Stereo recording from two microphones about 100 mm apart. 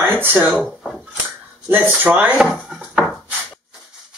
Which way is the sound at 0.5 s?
5° left (ahead or behind).